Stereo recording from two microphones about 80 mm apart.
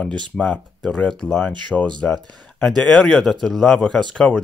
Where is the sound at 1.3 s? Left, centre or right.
Centre.